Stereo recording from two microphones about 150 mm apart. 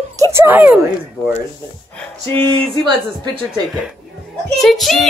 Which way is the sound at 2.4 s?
35° right (ahead or behind).